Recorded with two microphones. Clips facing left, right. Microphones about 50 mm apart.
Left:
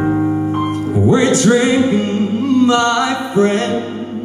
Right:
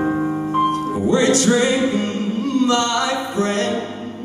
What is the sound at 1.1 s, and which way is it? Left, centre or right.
Music, left.